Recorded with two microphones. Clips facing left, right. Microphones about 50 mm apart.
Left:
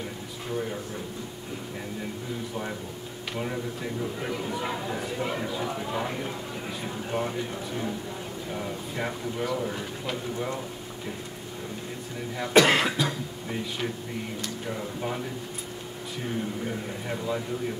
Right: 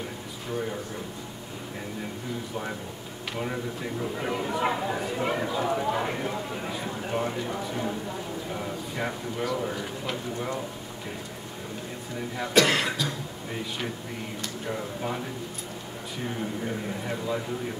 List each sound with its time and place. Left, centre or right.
3.3 s speech: centre
12.5 s cough: centre
14.4 s speech: centre
16.6 s speech: centre